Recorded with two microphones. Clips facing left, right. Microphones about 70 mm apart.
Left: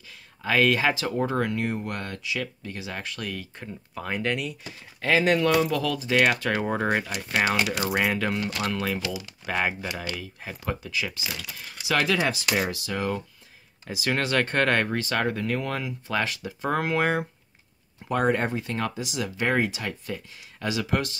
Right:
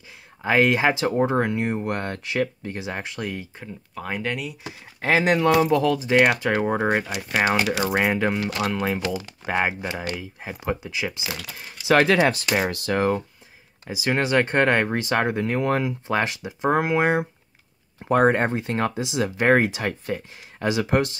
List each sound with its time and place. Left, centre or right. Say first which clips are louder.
0.4 s speech: right 3 dB; right
3.5 s speech: right 1 dB; centre
5.0 s speech: right 2 dB; right
6.4 s speech: right 4 dB; centre
8.0 s speech: right 3 dB; right
8.8 s speech: right 4 dB; right
11.5 s speech: right 8 dB; right
13.8 s speech: right 3 dB; centre; by 16.3 s right
16.4 s speech: right 5 dB; centre
18.0 s speech: right 5 dB; right